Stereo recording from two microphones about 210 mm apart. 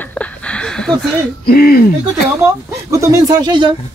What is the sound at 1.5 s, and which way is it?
Speech, 45° left (ahead or behind).